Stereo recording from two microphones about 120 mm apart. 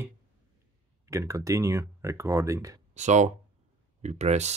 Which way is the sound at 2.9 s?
80° right.